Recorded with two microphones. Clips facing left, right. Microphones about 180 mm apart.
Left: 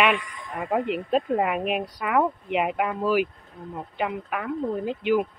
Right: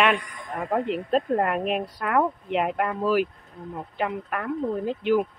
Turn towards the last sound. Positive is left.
turn(degrees=0)  # may be behind; listen again after turning